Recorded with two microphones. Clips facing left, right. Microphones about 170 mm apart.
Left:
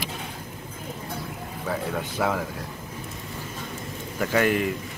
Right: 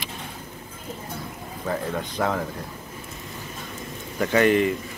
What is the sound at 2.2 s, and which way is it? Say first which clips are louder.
Speech: even; 5° left (ahead or behind).